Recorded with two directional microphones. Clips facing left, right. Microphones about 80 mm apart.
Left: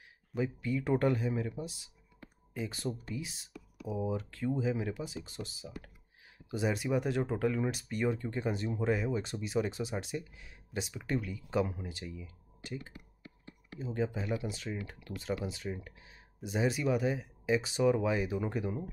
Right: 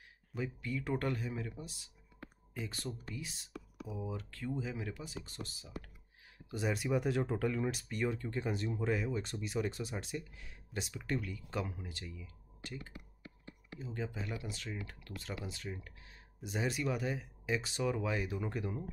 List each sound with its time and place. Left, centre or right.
0.3 s speech: centre
3.8 s speech: left
4.1 s speech: centre